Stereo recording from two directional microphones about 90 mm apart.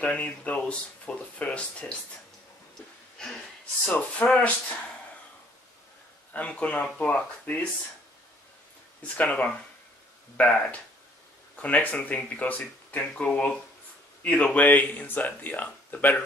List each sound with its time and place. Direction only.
0.0 s speech: 15° left (ahead or behind)
3.2 s speech: 10° left (ahead or behind)
6.3 s speech: 15° left (ahead or behind)
9.0 s speech: 15° left (ahead or behind)